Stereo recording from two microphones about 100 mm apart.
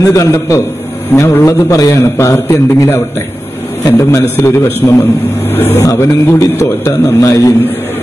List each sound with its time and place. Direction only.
0.0 s a man's voice: 30° left (ahead or behind)